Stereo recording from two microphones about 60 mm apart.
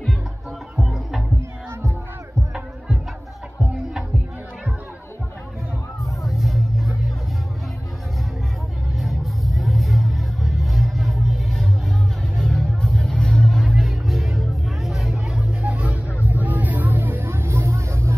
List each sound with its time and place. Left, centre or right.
0.7 s music: centre
6.2 s music: centre
9.0 s music: centre
12.2 s music: centre
15.6 s music: right